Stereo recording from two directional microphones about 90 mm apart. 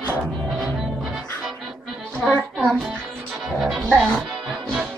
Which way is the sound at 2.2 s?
15° left (ahead or behind).